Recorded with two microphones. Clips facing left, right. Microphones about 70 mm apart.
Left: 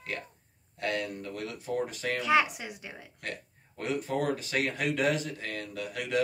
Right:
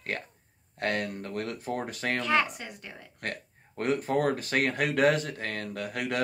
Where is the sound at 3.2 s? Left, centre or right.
Right.